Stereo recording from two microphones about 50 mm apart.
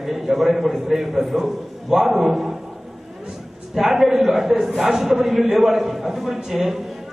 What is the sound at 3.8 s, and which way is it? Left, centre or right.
A man's voice, centre.